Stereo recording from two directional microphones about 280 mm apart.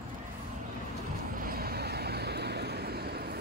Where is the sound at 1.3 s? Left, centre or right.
Right.